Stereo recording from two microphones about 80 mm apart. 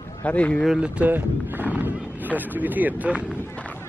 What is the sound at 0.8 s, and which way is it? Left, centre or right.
Speech, centre.